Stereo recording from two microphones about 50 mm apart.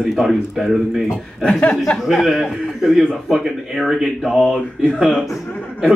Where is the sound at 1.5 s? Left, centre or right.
Left.